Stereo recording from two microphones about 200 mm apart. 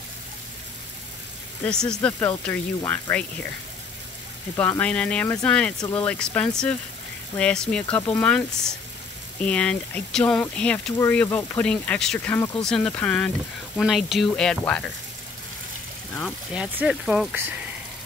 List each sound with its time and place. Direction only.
1.6 s speech: 5° left (ahead or behind)
4.6 s speech: 10° left (ahead or behind)
5.8 s speech: 20° left (ahead or behind)
6.3 s speech: 5° left (ahead or behind)
16.5 s speech: 5° right (ahead or behind)